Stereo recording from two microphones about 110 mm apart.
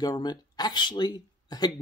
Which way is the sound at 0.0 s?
40° left (ahead or behind).